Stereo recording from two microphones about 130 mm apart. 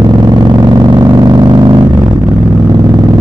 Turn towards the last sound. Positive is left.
turn(degrees=-35)  # may be behind; listen again after turning